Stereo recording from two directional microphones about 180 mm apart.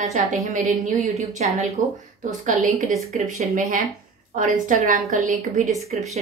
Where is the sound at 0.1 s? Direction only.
45° right (ahead or behind).